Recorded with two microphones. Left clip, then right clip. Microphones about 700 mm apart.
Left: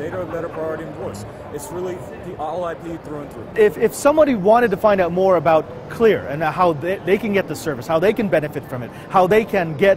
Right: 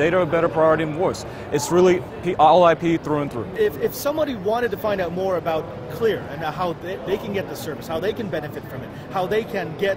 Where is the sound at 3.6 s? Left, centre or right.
Left.